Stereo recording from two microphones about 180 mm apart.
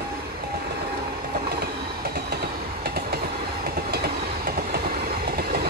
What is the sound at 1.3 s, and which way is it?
Train, 60° right (ahead or behind).